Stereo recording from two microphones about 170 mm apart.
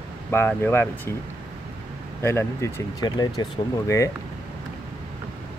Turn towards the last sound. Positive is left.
turn(degrees=20)  # may be behind; listen again after turning